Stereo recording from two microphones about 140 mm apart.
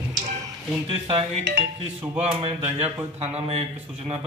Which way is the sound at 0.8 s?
40° right (ahead or behind).